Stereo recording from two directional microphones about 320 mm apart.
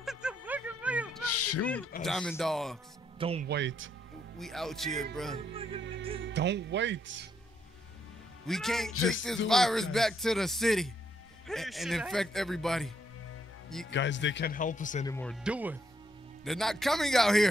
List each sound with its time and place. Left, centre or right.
0.0 s a sound: centre
1.2 s a sound: left
2.0 s speech: centre
3.2 s speech: centre
3.4 s speech: right
4.4 s speech: centre
5.8 s music: right
6.2 s speech: right
8.5 s speech: centre
13.8 s speech: left
15.0 s speech: centre